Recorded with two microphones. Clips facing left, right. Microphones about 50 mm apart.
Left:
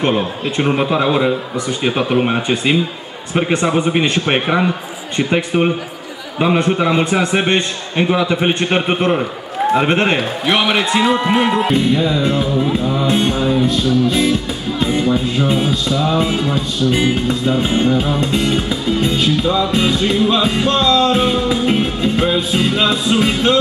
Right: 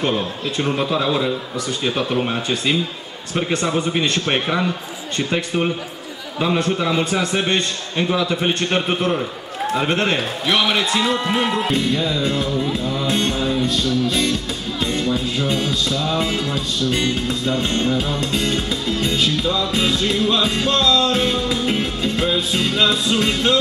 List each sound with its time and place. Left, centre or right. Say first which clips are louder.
0.2 s a man's voice: left 4 dB; left; by 23.6 s centre